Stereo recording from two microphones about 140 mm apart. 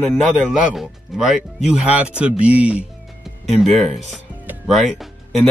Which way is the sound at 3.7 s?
5° left (ahead or behind).